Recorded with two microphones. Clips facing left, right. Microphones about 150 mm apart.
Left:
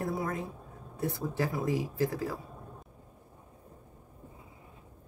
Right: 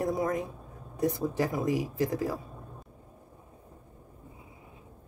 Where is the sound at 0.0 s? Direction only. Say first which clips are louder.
Right 5 dB; 20° right (ahead or behind).